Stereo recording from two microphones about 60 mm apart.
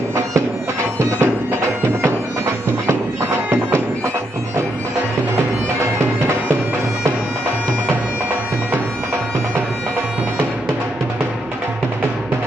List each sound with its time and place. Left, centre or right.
0.9 s bagpipes: right